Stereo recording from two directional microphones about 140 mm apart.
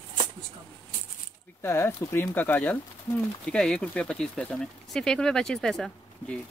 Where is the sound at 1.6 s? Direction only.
15° left (ahead or behind).